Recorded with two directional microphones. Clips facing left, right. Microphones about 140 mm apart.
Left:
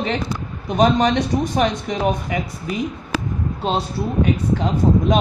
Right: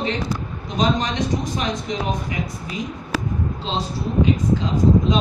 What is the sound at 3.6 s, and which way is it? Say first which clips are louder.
Speech: left 4 dB; 60° left (ahead or behind).